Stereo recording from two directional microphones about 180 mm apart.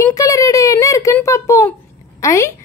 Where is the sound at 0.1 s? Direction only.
20° left (ahead or behind).